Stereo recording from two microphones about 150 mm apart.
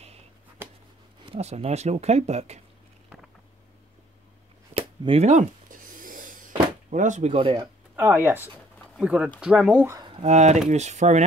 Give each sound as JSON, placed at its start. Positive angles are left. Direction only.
{"t": 0.6, "sound": "a sound", "side_deg": -15}
{"t": 1.3, "sound": "speech", "side_deg": -45}
{"t": 4.7, "sound": "a sound", "side_deg": -40}
{"t": 7.3, "sound": "speech", "side_deg": -35}
{"t": 7.9, "sound": "speech", "side_deg": -15}
{"t": 10.2, "sound": "speech", "side_deg": -50}